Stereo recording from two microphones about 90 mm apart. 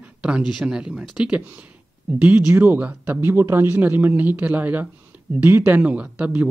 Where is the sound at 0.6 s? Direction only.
10° right (ahead or behind).